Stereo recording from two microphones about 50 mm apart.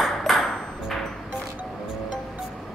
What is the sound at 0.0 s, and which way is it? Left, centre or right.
Ping, centre.